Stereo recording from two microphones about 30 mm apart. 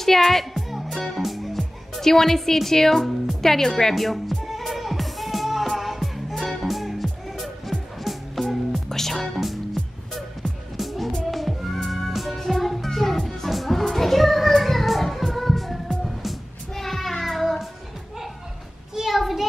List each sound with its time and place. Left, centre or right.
0.0 s speech: centre
0.7 s music: centre
1.1 s speech: centre
1.6 s a woman's voice: centre
3.9 s speech: centre
4.5 s music: centre
10.8 s music: centre
12.4 s music: centre
16.0 s music: centre
16.7 s child singing: centre
19.0 s a sound: centre